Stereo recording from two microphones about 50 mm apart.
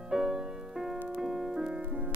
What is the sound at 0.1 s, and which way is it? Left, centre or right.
Music, centre.